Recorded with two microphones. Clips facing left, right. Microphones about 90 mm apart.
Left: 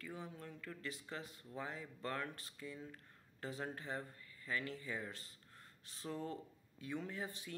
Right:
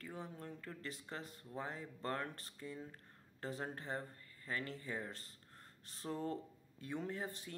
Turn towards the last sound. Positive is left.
turn(degrees=-40)  # may be behind; listen again after turning